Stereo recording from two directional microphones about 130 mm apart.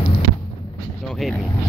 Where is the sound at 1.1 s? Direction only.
Centre (ahead or behind).